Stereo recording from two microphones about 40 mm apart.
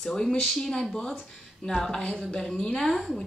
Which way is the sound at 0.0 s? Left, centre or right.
Centre.